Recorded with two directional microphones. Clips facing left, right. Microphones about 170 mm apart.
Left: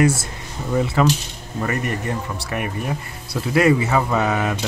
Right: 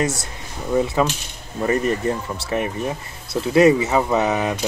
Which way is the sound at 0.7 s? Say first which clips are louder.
Left 1 dB; 15° right (ahead or behind).